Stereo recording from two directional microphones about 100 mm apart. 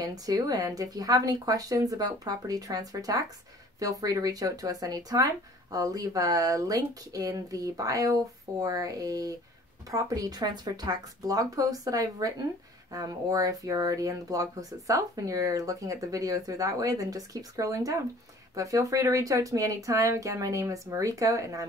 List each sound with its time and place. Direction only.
0.0 s speech: 40° right (ahead or behind)